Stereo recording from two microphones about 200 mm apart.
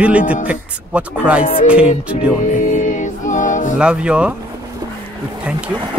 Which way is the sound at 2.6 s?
40° left (ahead or behind).